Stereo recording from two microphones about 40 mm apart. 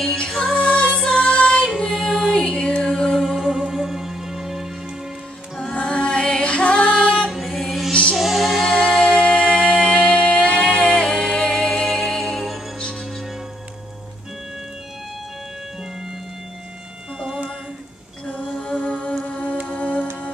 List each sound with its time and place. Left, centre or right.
0.1 s music: left
1.8 s music: centre
2.3 s music: left
2.9 s music: centre
3.3 s music: centre
5.7 s music: left
7.2 s music: centre
7.9 s music: left
8.2 s music: centre
8.7 s music: centre; by 11.1 s left
11.1 s music: left; by 12.5 s centre
18.6 s music: left